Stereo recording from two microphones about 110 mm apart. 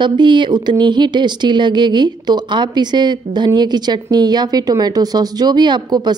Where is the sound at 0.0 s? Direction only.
45° right (ahead or behind).